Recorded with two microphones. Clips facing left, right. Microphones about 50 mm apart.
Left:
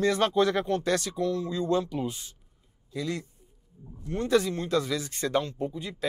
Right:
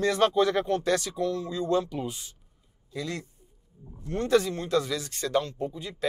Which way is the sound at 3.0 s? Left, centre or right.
Centre.